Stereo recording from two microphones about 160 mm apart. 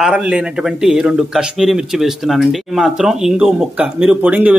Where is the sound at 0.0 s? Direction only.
5° right (ahead or behind).